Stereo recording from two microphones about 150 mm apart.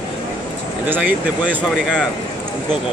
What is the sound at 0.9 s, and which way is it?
Speech, 10° right (ahead or behind).